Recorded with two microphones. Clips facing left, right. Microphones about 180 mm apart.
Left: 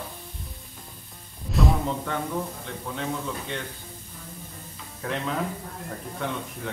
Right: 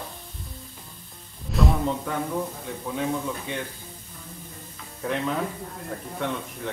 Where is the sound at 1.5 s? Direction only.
Centre (ahead or behind).